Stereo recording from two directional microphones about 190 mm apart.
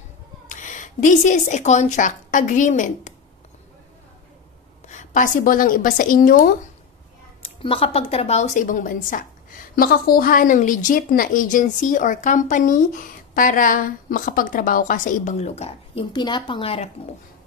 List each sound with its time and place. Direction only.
0.5 s speech: 40° left (ahead or behind)
4.8 s a woman's voice: 40° left (ahead or behind)
7.4 s a woman's voice: 30° left (ahead or behind)